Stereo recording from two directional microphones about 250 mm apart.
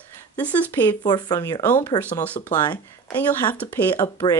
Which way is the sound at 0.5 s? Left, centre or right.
Centre.